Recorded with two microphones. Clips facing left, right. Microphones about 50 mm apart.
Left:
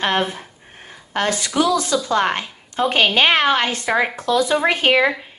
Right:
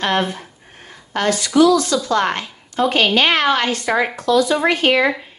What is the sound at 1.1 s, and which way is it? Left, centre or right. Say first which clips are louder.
A woman's voice: right 3 dB; left.